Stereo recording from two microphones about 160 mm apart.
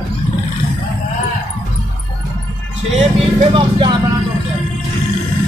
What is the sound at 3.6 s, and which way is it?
Speech, 30° right (ahead or behind).